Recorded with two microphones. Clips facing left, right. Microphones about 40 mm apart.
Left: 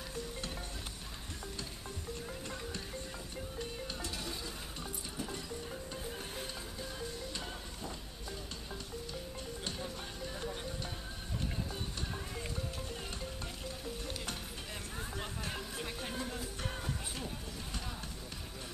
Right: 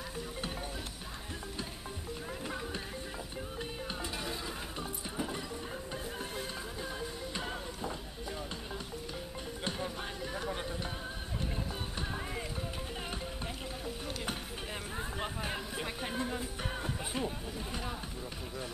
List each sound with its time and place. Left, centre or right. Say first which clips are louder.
2.4 s music: right 4 dB; centre
9.7 s music: right 7 dB; right
13.8 s stir: right 4 dB; centre
15.0 s music: right 4 dB; centre